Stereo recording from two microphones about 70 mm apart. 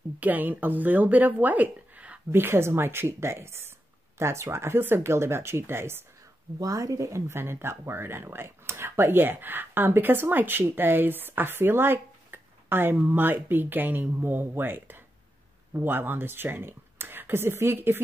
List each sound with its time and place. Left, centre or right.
0.2 s speech: right
2.3 s speech: right
6.6 s speech: right